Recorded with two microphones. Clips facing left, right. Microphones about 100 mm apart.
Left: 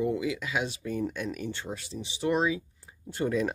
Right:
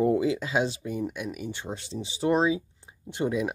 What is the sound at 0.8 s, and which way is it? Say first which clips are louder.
Speech: even; 10° right (ahead or behind).